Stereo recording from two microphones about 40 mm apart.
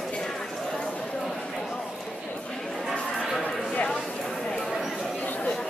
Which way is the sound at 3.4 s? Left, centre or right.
Left.